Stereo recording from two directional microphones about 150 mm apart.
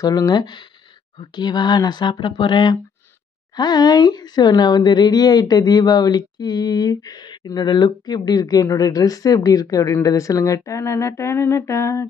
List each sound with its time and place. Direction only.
0.0 s a woman's voice: 25° left (ahead or behind)